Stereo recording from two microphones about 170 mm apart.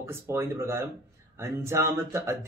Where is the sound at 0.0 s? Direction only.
15° right (ahead or behind).